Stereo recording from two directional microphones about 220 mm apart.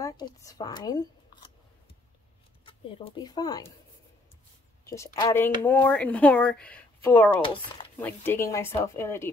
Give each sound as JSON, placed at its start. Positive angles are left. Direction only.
{"t": 0.0, "sound": "speech", "side_deg": 15}
{"t": 2.6, "sound": "speech", "side_deg": 20}
{"t": 4.8, "sound": "speech", "side_deg": 15}